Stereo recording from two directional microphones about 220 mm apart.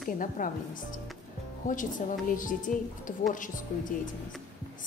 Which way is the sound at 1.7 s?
35° left (ahead or behind).